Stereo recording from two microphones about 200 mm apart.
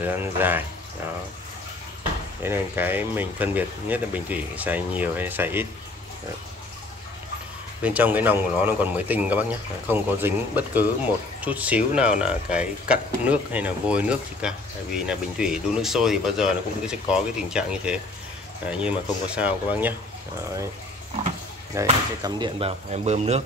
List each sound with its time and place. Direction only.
0.0 s speech: 10° right (ahead or behind)
2.4 s speech: 10° right (ahead or behind)
7.8 s speech: 10° right (ahead or behind)
21.7 s speech: 15° right (ahead or behind)
22.2 s speech: 25° right (ahead or behind)